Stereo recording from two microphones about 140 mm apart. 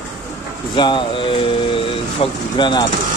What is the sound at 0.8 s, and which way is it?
Speech, 35° left (ahead or behind).